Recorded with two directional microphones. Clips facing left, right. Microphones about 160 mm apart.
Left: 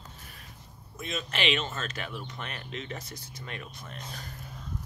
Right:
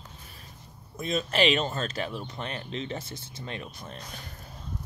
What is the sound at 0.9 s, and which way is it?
Speech, 35° right (ahead or behind).